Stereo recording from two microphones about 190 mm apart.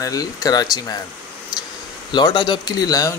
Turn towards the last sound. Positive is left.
turn(degrees=20)  # may be behind; listen again after turning